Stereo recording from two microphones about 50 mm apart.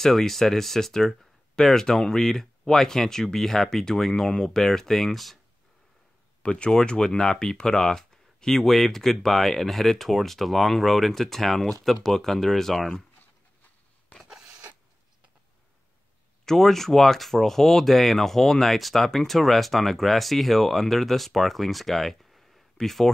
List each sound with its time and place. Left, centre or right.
0.0 s speech: centre
6.4 s speech: centre
14.1 s rub: left
16.4 s speech: centre